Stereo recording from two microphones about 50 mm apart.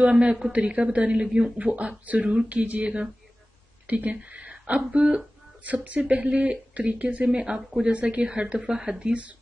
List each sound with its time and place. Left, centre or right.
0.0 s a woman's voice: right
7.2 s speech: centre